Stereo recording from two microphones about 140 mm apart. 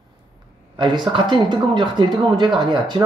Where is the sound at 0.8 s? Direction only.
35° right (ahead or behind).